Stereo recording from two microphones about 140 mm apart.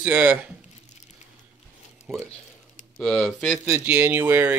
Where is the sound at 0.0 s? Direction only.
10° right (ahead or behind).